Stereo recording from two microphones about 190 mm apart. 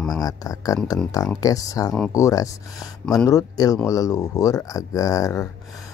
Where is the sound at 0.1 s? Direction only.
20° left (ahead or behind).